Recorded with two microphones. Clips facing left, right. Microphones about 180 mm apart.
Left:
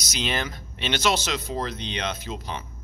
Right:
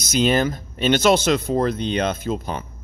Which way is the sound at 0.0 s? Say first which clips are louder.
Right 11 dB; 50° right (ahead or behind).